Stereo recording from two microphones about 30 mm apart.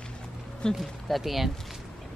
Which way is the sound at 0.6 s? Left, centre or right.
Left.